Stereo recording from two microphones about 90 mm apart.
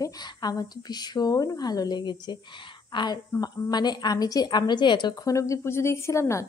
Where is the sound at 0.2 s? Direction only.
45° left (ahead or behind).